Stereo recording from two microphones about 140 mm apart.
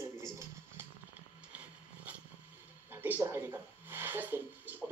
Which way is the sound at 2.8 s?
15° right (ahead or behind).